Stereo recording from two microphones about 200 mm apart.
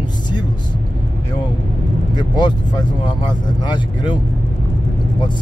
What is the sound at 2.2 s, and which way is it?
Speech, 20° left (ahead or behind).